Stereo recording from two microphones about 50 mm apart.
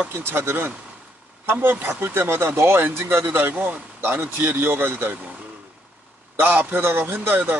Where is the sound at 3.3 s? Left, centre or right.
Right.